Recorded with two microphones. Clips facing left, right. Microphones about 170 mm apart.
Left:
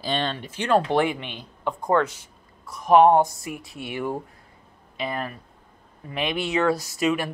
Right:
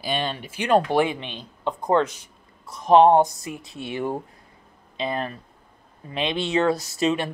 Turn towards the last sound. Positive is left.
turn(degrees=-25)  # may be behind; listen again after turning